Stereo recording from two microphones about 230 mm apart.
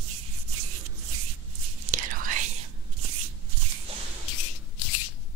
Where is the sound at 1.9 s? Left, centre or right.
Right.